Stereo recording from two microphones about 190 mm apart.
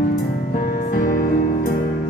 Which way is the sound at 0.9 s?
45° left (ahead or behind).